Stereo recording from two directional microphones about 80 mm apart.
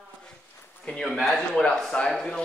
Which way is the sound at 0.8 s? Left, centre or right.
Centre.